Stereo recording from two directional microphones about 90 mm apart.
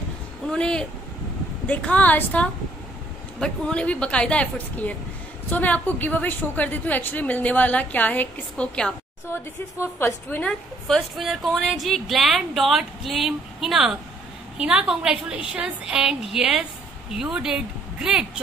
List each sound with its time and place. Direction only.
0.5 s a woman's voice: 10° left (ahead or behind)
9.3 s a woman's voice: 25° left (ahead or behind)
10.4 s a woman's voice: centre (ahead or behind)